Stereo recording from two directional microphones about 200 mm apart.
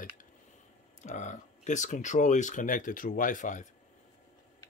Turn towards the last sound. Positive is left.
turn(degrees=40)  # may be behind; listen again after turning